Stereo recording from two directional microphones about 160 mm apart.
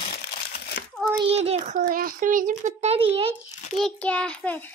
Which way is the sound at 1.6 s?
60° right (ahead or behind).